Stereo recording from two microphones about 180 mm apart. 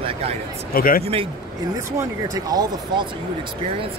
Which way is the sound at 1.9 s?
20° right (ahead or behind).